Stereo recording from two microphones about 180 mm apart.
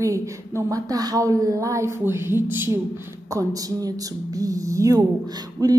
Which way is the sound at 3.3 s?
20° right (ahead or behind).